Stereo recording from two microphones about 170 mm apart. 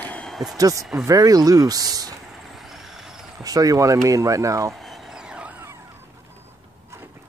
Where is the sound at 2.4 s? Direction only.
Centre (ahead or behind).